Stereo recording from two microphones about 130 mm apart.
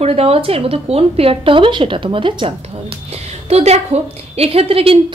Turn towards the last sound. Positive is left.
turn(degrees=-45)  # may be behind; listen again after turning